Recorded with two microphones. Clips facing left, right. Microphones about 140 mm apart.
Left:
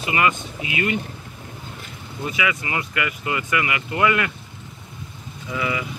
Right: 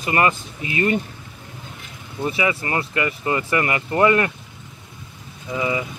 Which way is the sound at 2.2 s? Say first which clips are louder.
Right 3 dB; 35° right (ahead or behind).